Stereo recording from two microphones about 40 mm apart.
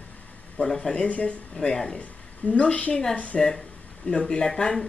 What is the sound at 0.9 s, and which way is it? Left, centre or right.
Speech, left.